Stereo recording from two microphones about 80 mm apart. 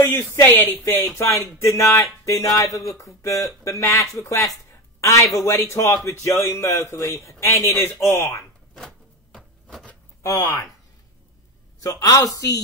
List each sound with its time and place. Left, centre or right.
0.1 s a woman's voice: left
8.7 s a sound: centre
10.2 s a man's voice: left
11.8 s a man's voice: left